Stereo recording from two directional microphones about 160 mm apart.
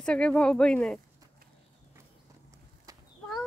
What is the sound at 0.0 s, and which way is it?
Speech, 5° left (ahead or behind).